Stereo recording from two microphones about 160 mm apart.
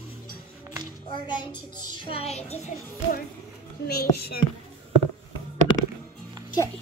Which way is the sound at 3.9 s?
75° left (ahead or behind).